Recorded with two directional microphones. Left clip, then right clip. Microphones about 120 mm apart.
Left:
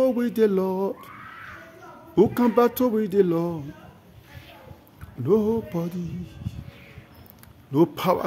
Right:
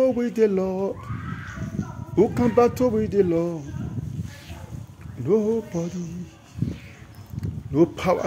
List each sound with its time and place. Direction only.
0.0 s speech: 20° left (ahead or behind)
2.1 s speech: 25° left (ahead or behind)
5.2 s speech: 25° left (ahead or behind)
7.7 s speech: 20° left (ahead or behind)